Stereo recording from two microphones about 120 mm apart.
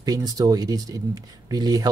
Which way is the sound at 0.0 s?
35° right (ahead or behind).